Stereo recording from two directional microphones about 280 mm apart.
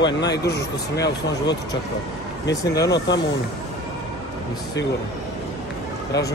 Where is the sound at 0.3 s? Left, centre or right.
Left.